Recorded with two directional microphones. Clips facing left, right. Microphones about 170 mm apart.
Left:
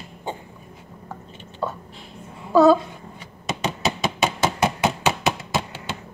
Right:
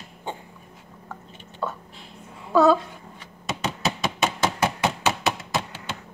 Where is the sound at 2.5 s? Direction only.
5° left (ahead or behind).